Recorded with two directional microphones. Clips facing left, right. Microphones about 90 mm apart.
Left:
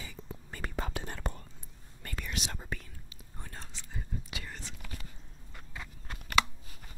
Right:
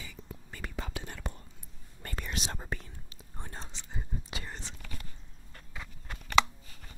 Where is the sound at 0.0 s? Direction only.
40° left (ahead or behind).